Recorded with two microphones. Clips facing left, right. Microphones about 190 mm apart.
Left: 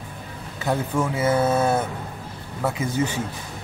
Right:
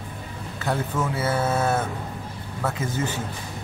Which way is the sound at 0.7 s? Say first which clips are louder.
Left 3 dB; 15° left (ahead or behind).